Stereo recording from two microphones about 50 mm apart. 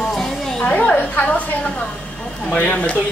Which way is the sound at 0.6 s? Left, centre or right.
Left.